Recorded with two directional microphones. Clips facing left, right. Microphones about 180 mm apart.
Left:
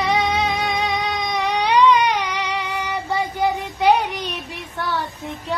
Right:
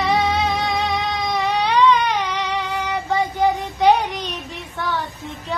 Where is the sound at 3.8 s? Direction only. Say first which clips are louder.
Right 1 dB; 10° left (ahead or behind).